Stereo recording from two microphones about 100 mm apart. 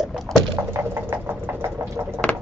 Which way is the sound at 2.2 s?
10° left (ahead or behind).